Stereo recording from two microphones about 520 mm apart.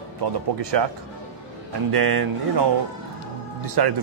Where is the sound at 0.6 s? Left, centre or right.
Right.